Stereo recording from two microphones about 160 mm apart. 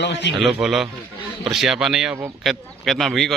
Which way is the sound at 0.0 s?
90° left.